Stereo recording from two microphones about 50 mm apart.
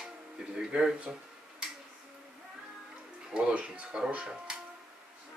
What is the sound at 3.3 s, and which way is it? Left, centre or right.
Speech, right.